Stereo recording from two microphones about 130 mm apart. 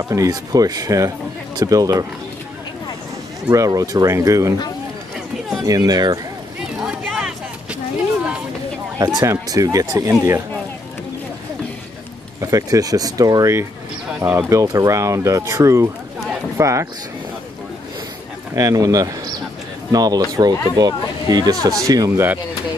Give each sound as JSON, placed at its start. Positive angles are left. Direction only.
{"t": 0.1, "sound": "speech", "side_deg": -25}
{"t": 3.4, "sound": "speech", "side_deg": -25}
{"t": 5.7, "sound": "speech", "side_deg": -30}
{"t": 6.8, "sound": "a sound", "side_deg": -5}
{"t": 8.9, "sound": "speech", "side_deg": -25}
{"t": 12.4, "sound": "speech", "side_deg": -25}
{"t": 18.5, "sound": "speech", "side_deg": -30}